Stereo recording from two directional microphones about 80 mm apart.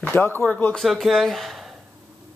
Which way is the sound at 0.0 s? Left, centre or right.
Left.